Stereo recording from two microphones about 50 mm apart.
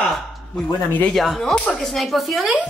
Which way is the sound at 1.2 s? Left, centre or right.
Centre.